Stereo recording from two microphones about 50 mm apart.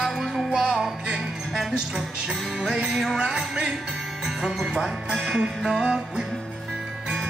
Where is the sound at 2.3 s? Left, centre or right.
Centre.